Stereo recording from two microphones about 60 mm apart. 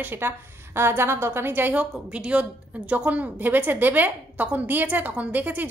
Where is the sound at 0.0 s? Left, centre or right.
Right.